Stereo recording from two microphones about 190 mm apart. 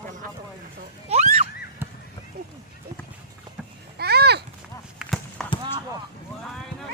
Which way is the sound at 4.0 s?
60° right (ahead or behind).